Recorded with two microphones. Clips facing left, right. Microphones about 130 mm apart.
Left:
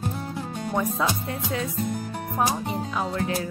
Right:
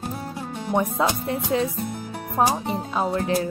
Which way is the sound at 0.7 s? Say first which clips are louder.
Right 3 dB; 25° right (ahead or behind).